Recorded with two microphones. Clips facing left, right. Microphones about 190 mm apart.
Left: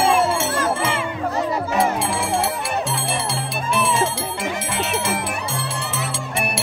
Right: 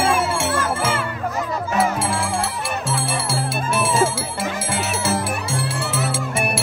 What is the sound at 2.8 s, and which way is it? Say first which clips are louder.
Music: right 1 dB; centre (ahead or behind).